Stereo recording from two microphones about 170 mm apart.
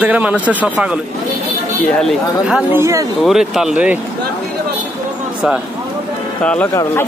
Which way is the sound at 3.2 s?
Centre (ahead or behind).